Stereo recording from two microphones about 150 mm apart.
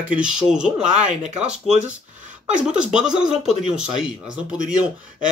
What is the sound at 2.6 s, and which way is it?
Speech, 5° right (ahead or behind).